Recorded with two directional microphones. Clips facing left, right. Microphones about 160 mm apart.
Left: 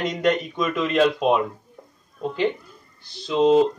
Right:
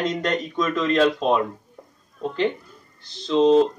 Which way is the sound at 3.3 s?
5° left (ahead or behind).